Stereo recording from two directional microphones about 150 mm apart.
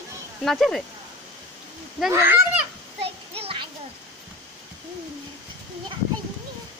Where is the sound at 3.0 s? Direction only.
40° right (ahead or behind).